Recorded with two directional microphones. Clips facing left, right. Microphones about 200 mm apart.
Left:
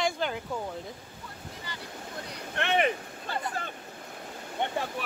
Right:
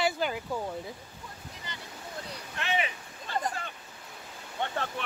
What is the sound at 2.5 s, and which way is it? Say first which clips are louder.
Speech: left 5 dB; 60° left (ahead or behind).